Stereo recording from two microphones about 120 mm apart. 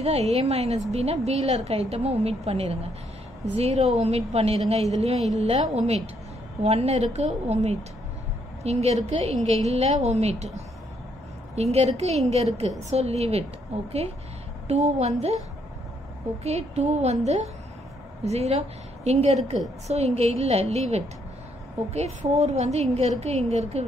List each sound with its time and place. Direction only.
0.0 s a woman's voice: 60° right (ahead or behind)
11.5 s a woman's voice: 65° right (ahead or behind)
14.7 s a woman's voice: 65° right (ahead or behind)
16.4 s a woman's voice: 65° right (ahead or behind)